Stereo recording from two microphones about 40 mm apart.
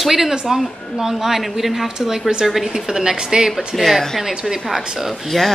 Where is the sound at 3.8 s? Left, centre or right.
Centre.